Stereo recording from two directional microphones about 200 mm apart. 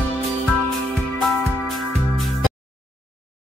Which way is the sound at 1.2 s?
Centre (ahead or behind).